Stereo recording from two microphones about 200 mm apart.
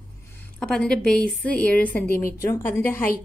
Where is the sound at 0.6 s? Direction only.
5° left (ahead or behind).